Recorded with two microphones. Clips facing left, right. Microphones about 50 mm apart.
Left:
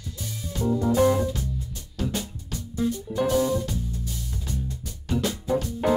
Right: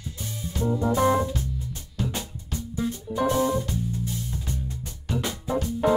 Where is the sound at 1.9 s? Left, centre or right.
Centre.